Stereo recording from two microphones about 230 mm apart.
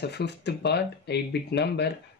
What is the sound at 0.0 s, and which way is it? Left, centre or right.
Speech, left.